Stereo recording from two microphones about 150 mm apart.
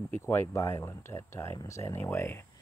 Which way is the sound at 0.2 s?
15° left (ahead or behind).